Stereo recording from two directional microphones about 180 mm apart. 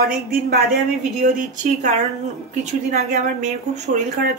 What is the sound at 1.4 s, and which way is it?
A woman's voice, 45° right (ahead or behind).